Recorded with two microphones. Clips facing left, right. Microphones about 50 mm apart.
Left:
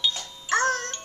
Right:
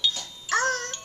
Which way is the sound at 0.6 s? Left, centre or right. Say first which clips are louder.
Left 1 dB; centre.